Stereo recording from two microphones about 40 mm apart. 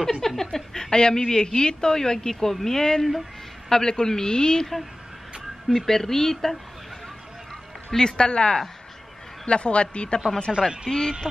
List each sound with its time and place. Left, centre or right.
0.0 s speech: centre
3.0 s speech: centre
3.6 s speech: centre
5.7 s speech: centre
7.9 s a man's voice: centre
10.9 s speech: centre